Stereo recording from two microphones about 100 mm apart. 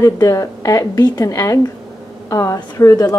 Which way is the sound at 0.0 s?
35° left (ahead or behind).